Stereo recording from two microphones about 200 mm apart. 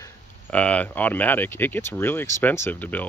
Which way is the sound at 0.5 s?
5° left (ahead or behind).